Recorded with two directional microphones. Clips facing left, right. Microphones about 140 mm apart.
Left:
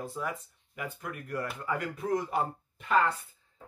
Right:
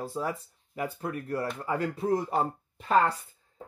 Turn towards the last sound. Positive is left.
turn(degrees=-35)  # may be behind; listen again after turning